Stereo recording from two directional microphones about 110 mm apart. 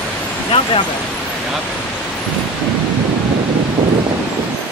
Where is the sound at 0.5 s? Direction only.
60° left (ahead or behind).